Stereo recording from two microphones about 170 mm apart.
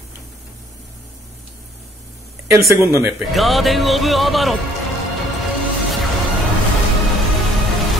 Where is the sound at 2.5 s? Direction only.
15° right (ahead or behind).